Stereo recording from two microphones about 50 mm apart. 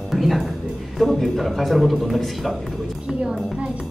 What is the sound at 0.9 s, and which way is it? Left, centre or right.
Speech, centre.